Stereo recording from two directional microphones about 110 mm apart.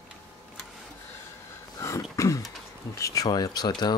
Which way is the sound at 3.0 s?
30° left (ahead or behind).